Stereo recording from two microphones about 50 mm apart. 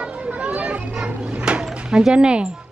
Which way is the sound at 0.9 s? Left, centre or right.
Centre.